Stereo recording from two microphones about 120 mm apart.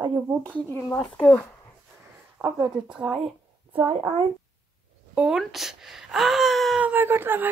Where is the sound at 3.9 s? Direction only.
45° right (ahead or behind).